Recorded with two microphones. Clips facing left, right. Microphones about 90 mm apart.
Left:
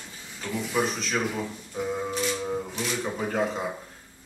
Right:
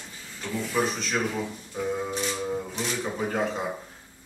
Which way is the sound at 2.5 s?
Centre (ahead or behind).